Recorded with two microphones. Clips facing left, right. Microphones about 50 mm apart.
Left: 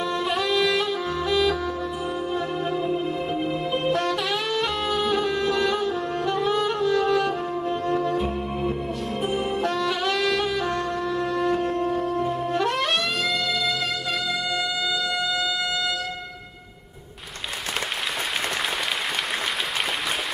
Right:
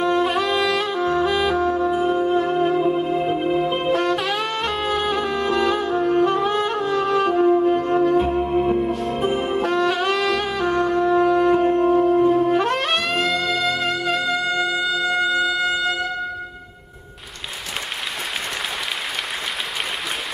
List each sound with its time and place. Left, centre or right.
0.0 s saxophone: right
0.7 s music: right
3.9 s saxophone: right
4.9 s music: right
5.9 s saxophone: right
8.2 s music: right
10.2 s saxophone: right
11.5 s wind instrument: right
12.8 s music: right
13.4 s saxophone: right
14.2 s music: right